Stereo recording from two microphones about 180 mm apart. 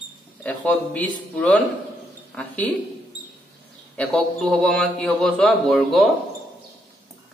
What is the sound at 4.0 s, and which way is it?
Speech, 5° left (ahead or behind).